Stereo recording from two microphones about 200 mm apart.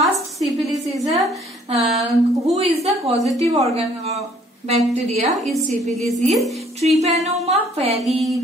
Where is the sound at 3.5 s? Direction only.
30° right (ahead or behind).